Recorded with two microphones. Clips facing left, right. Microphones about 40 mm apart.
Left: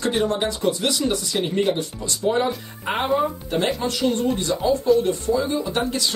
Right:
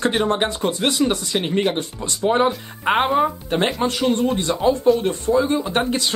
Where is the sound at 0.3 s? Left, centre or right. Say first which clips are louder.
Right 2 dB; right.